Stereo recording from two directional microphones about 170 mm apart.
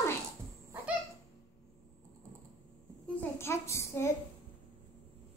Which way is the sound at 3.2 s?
15° left (ahead or behind).